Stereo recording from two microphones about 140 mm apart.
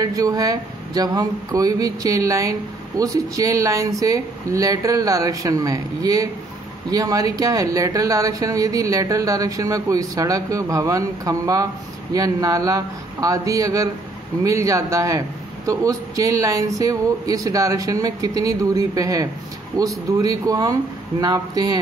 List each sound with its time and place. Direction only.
0.0 s speech: 25° right (ahead or behind)